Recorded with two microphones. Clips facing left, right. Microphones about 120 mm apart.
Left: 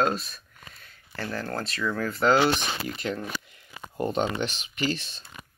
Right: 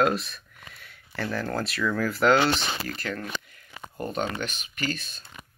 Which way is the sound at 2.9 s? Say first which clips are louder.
Left 2 dB; 20° left (ahead or behind).